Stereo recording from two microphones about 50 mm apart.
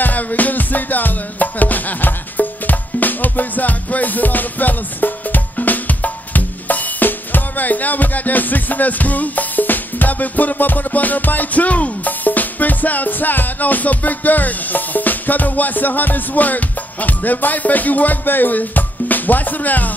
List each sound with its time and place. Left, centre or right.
0.0 s music: left